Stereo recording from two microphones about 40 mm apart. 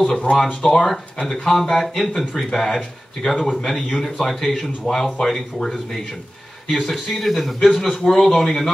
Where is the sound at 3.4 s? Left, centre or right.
Left.